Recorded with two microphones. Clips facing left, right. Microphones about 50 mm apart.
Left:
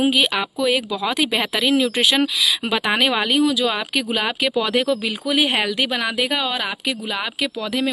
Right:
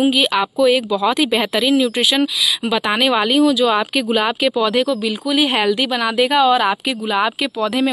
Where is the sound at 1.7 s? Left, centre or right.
Centre.